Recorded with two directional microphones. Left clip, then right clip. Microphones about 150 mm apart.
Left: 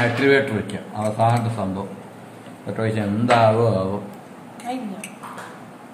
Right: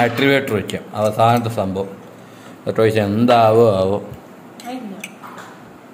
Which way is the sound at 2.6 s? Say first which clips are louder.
Right 9 dB; 90° right.